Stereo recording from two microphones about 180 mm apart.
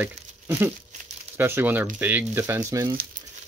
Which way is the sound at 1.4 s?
10° right (ahead or behind).